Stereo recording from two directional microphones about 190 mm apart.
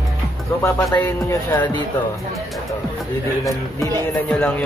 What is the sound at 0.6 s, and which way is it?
Speech, 15° left (ahead or behind).